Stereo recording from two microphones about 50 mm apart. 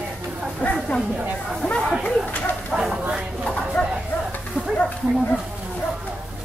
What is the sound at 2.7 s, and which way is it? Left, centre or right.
Bow-wow, centre.